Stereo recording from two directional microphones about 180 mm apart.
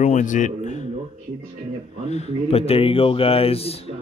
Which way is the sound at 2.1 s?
35° left (ahead or behind).